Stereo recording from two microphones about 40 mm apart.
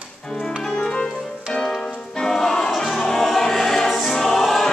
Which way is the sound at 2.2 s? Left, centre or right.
Centre.